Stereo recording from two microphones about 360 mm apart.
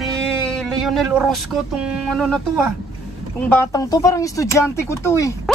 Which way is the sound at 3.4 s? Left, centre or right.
Centre.